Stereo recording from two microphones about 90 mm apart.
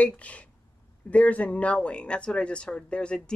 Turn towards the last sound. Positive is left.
turn(degrees=10)  # may be behind; listen again after turning